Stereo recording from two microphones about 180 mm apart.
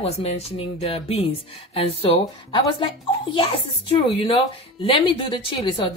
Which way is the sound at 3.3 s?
30° left (ahead or behind).